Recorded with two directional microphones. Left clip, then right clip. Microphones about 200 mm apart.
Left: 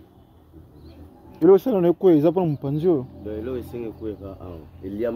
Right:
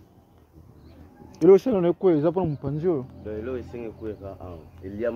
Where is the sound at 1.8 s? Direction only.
20° left (ahead or behind).